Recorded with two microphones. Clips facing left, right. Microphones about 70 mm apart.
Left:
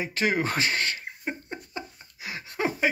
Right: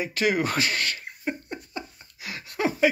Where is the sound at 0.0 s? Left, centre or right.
Left.